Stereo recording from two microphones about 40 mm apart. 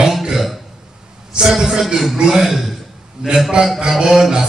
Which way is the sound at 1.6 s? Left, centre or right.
Centre.